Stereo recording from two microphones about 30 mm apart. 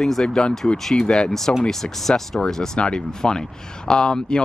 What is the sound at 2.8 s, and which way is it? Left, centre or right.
Speech, left.